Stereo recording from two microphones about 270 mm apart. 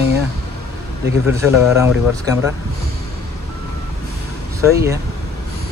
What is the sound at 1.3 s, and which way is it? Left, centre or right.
Speech, centre.